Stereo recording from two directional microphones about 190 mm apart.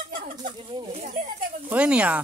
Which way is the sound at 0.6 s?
30° right (ahead or behind).